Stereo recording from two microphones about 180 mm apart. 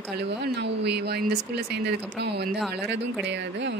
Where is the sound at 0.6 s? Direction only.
70° right (ahead or behind).